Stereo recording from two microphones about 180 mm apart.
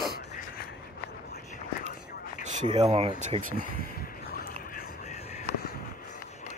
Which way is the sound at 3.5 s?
55° left (ahead or behind).